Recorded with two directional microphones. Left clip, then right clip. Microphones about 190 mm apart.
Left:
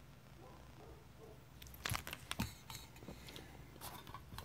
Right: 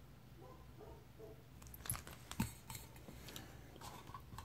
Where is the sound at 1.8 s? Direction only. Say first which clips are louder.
Left 8 dB; 15° left (ahead or behind).